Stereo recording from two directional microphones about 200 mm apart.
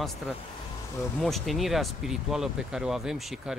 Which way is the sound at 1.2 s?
Centre (ahead or behind).